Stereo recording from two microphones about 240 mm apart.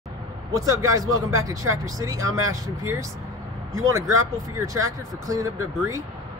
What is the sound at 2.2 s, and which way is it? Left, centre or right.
Speech, right.